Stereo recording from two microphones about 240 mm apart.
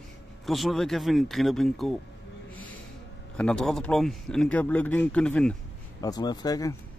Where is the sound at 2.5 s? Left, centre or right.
Centre.